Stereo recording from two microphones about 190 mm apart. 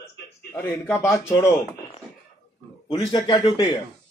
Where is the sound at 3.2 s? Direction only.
25° left (ahead or behind).